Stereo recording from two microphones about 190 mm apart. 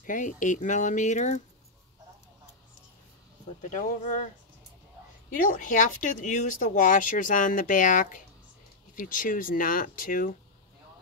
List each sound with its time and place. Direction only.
0.0 s speech: 40° left (ahead or behind)
3.7 s speech: 40° left (ahead or behind)
5.3 s speech: 45° left (ahead or behind)